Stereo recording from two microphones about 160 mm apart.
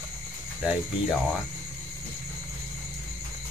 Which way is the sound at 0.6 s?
5° right (ahead or behind).